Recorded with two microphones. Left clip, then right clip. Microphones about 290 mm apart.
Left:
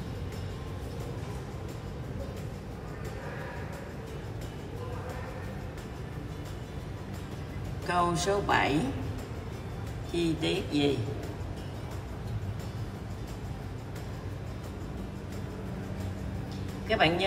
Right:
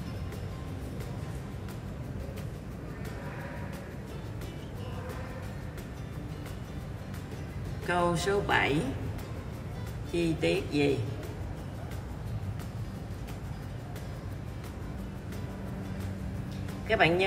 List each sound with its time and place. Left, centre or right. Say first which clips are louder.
7.8 s speech: left 1 dB; centre
10.1 s speech: right 1 dB; centre
16.8 s speech: even; centre